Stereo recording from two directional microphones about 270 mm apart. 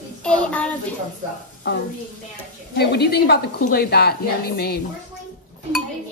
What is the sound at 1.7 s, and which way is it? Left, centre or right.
A woman's voice, left.